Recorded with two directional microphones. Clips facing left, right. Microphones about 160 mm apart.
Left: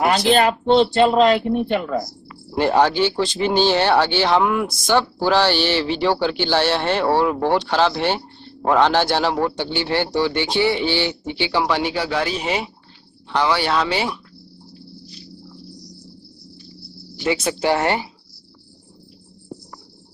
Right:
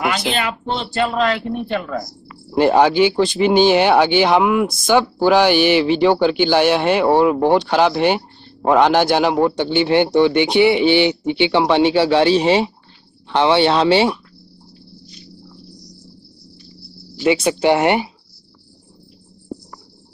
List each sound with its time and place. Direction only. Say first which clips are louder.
0.0 s speech: left 5 dB; 35° left (ahead or behind)
0.7 s speech: left 5 dB; 25° left (ahead or behind)
2.5 s a man's voice: right 4 dB; 10° right (ahead or behind); by 14.2 s 30° right (ahead or behind)
17.2 s a man's voice: right 5 dB; 15° right (ahead or behind)